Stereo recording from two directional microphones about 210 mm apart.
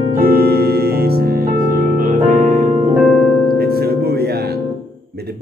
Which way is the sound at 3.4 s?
45° right (ahead or behind).